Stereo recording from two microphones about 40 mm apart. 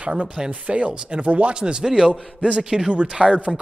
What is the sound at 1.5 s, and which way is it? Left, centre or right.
Speech, right.